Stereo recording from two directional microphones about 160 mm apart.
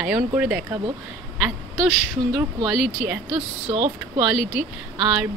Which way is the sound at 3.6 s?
35° right (ahead or behind).